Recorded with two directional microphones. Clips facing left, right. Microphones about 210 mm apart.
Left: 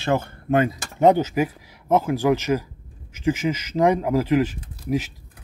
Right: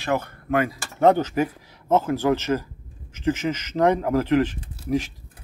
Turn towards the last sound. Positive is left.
turn(degrees=5)  # may be behind; listen again after turning